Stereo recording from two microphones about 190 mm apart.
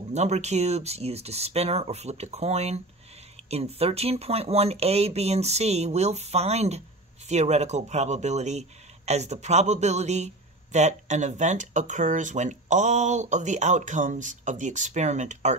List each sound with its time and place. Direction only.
0.1 s speech: 35° right (ahead or behind)